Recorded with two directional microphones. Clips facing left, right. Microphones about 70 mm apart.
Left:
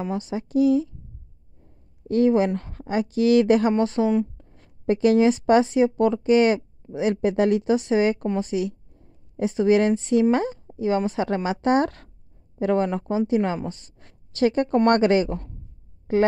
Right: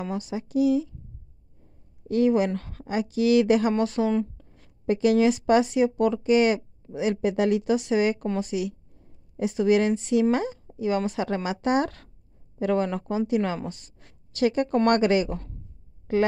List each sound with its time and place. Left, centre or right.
0.0 s speech: left
2.0 s speech: left
10.7 s a sound: left
11.0 s a woman's voice: left